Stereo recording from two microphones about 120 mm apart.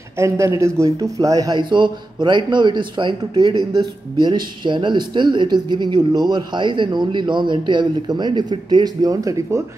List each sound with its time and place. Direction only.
0.2 s speech: 25° right (ahead or behind)